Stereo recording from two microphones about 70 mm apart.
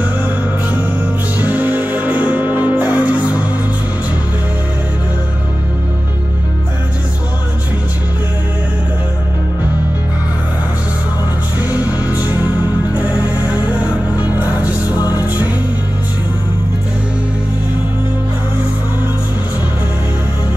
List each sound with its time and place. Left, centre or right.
0.0 s music: right
11.7 s music: left
13.5 s music: centre
14.1 s music: left
14.4 s music: right
14.9 s music: left